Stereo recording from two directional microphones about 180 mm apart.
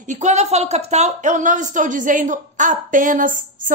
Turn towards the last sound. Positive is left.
turn(degrees=-45)  # may be behind; listen again after turning